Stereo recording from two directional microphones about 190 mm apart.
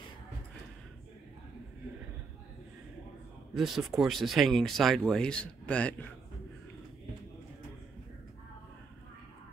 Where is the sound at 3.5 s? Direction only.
Centre (ahead or behind).